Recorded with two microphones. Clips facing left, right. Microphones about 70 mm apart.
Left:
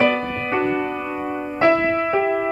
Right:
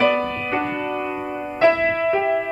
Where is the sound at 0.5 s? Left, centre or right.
Centre.